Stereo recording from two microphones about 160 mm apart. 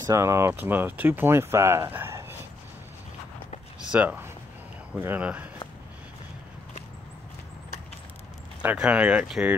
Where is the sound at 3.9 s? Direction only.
10° right (ahead or behind).